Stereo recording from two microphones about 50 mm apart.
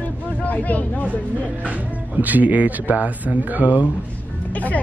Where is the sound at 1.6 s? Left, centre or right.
Right.